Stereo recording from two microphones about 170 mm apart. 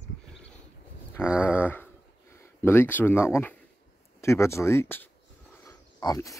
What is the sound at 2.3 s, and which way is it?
Speech, 15° left (ahead or behind).